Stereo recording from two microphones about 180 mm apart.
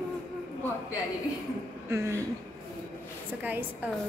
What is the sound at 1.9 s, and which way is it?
Speech, 15° right (ahead or behind).